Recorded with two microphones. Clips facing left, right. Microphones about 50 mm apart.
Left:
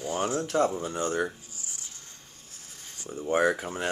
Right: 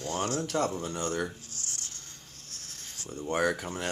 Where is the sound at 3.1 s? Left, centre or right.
Centre.